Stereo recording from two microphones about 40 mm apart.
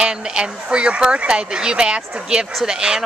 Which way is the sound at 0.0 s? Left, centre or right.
Right.